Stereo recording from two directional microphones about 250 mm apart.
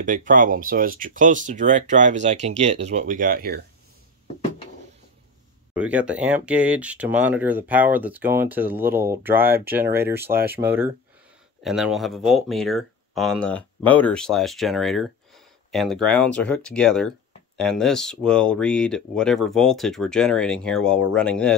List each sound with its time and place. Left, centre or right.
0.0 s speech: right
5.8 s speech: centre